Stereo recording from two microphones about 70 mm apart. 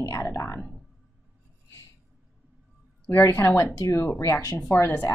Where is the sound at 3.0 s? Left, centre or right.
Left.